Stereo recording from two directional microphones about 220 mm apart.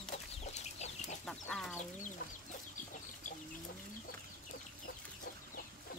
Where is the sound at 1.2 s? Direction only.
5° left (ahead or behind).